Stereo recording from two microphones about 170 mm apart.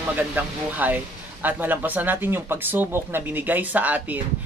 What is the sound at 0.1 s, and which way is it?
Speech, 10° right (ahead or behind).